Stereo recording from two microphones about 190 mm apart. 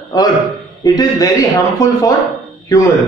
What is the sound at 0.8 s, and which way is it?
Speech, 20° left (ahead or behind).